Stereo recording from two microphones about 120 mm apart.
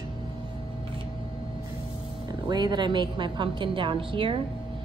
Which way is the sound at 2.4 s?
35° right (ahead or behind).